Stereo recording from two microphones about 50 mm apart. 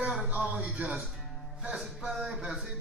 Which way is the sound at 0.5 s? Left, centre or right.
Right.